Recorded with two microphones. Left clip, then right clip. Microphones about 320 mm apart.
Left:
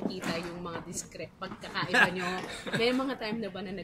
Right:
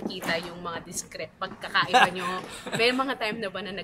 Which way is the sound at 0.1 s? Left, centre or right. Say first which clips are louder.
Right 5 dB; right.